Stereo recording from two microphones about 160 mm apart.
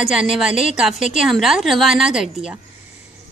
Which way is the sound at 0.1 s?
5° right (ahead or behind).